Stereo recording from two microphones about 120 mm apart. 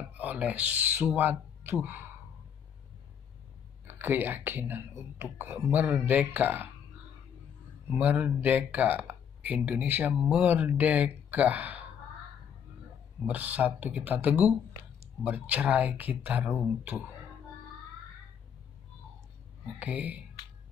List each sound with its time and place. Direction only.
0.2 s speech: 10° right (ahead or behind)
3.8 s speech: 15° right (ahead or behind)
7.9 s speech: 10° right (ahead or behind)
13.3 s speech: 15° right (ahead or behind)
19.8 s speech: 10° right (ahead or behind)